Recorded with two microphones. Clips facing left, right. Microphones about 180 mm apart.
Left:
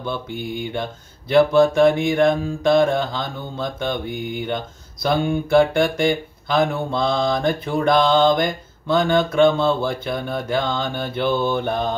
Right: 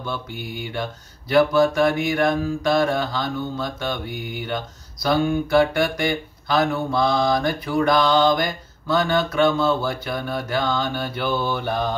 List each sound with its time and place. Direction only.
1.3 s speech: 25° left (ahead or behind)